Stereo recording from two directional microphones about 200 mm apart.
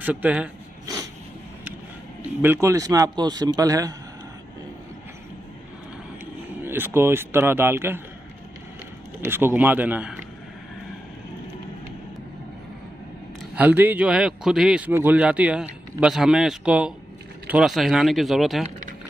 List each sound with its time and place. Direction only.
0.0 s a sound: 10° right (ahead or behind)
2.4 s a man's voice: 10° right (ahead or behind)
6.6 s a man's voice: 10° right (ahead or behind)
9.2 s a man's voice: 10° right (ahead or behind)
13.6 s a man's voice: 10° right (ahead or behind)